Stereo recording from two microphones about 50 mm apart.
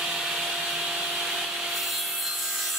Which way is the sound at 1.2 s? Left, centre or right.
Centre.